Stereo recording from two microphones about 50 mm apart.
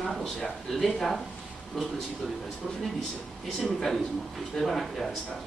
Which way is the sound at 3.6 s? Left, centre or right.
Centre.